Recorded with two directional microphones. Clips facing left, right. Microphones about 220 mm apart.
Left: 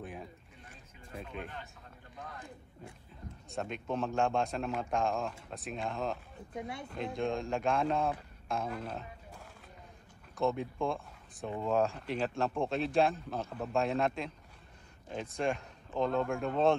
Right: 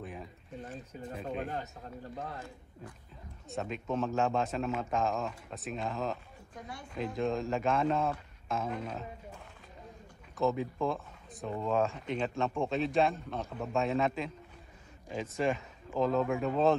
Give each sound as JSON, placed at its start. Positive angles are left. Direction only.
{"t": 1.2, "sound": "speech", "side_deg": -40}
{"t": 3.4, "sound": "a man's voice", "side_deg": 0}
{"t": 6.5, "sound": "speech", "side_deg": 25}
{"t": 6.9, "sound": "a man's voice", "side_deg": 0}
{"t": 10.3, "sound": "a man's voice", "side_deg": 0}